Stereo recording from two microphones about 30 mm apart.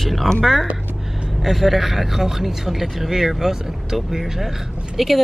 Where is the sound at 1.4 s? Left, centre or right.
Centre.